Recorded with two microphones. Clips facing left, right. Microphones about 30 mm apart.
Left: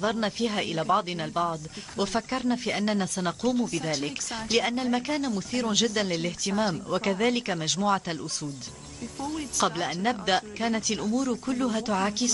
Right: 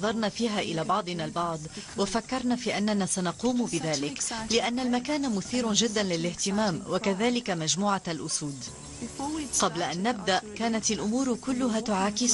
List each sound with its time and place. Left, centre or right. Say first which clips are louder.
0.0 s speech: left 1 dB; centre